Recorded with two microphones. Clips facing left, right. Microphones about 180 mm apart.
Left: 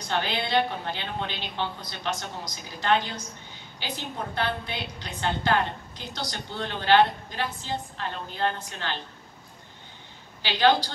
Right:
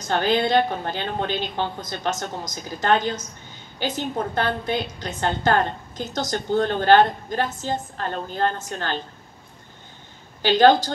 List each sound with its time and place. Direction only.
0.0 s a woman's voice: 45° right (ahead or behind)
10.4 s a woman's voice: 45° right (ahead or behind)